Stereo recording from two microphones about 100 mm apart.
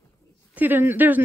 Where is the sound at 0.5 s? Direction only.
20° right (ahead or behind).